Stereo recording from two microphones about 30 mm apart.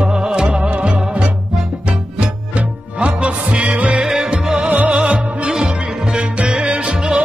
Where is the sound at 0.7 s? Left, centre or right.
Right.